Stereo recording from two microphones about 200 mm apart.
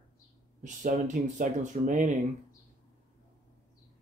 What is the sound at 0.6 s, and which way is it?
Speech, 40° right (ahead or behind).